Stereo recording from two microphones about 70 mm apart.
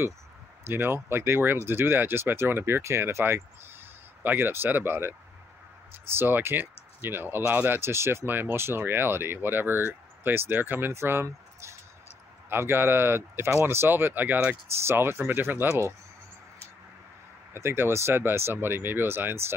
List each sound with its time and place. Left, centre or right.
0.7 s speech: right
17.6 s speech: right